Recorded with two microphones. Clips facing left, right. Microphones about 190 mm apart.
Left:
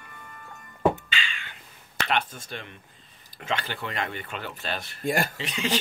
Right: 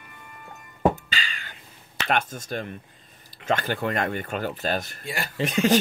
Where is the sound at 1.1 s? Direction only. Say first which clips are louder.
Even; 40° right (ahead or behind).